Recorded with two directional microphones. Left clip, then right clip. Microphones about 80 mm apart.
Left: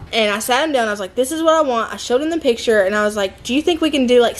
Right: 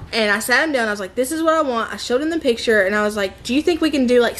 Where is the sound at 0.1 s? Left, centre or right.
Centre.